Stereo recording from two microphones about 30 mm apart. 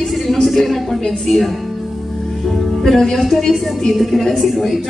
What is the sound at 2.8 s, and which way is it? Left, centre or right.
Speech, centre.